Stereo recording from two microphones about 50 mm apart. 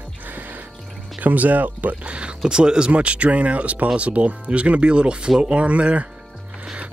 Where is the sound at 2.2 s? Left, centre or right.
Centre.